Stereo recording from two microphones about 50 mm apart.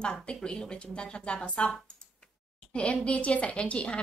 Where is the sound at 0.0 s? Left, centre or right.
Centre.